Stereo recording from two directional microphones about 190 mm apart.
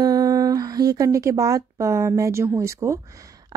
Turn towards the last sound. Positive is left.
turn(degrees=-15)  # may be behind; listen again after turning